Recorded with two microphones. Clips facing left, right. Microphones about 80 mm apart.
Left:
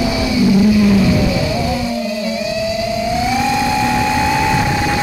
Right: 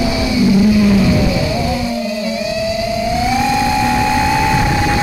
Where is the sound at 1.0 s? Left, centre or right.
Centre.